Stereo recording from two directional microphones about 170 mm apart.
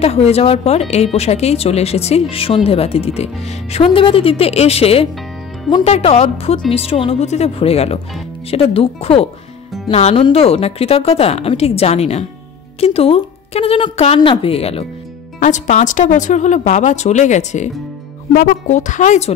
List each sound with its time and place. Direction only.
0.0 s speech: 40° left (ahead or behind)
15.4 s speech: 45° left (ahead or behind)